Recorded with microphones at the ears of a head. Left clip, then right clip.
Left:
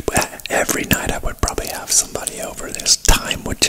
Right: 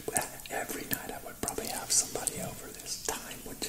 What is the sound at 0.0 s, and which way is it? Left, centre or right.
Whispering, left.